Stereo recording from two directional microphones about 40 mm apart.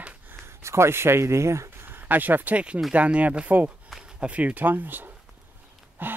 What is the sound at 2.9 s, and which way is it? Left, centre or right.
Speech, right.